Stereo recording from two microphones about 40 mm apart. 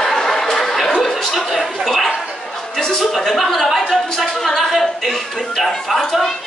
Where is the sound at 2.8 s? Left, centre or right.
Centre.